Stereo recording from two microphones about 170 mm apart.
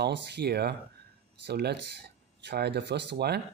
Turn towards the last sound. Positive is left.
turn(degrees=-70)  # may be behind; listen again after turning